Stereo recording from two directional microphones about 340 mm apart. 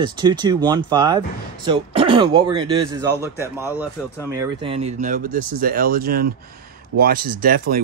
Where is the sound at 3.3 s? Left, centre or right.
Centre.